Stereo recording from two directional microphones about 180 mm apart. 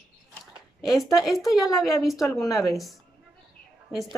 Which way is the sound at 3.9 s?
Centre (ahead or behind).